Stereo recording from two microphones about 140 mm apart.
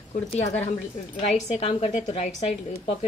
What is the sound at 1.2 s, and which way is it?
A woman's voice, 45° left (ahead or behind).